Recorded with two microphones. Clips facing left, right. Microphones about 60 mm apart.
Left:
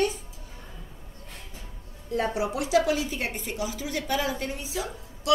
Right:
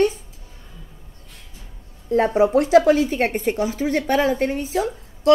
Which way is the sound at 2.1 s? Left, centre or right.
Right.